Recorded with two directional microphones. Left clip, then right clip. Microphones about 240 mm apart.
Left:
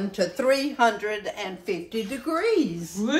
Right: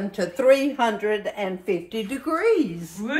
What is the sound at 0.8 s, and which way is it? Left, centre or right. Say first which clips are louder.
Speech: even; right.